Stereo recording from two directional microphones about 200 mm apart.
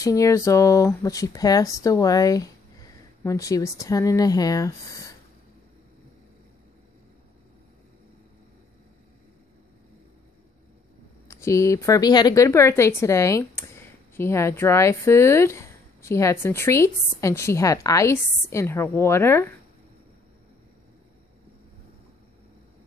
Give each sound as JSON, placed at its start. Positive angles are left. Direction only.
{"t": 0.0, "sound": "a woman's voice", "side_deg": 15}
{"t": 11.2, "sound": "a woman's voice", "side_deg": 15}